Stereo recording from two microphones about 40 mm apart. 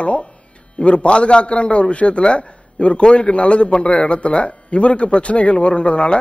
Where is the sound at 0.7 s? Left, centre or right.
Left.